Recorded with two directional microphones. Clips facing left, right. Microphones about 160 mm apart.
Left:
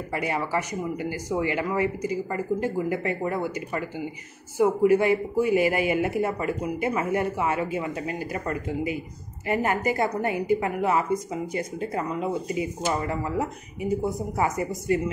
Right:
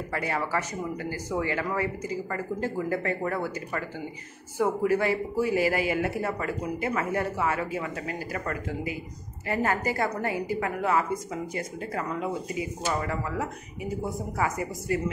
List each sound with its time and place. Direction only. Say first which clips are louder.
0.1 s speech: left 2 dB; 15° left (ahead or behind)